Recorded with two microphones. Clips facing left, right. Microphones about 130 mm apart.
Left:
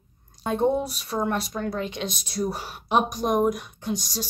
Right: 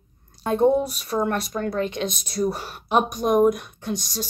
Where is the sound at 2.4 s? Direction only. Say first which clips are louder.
Right 4 dB; 5° left (ahead or behind).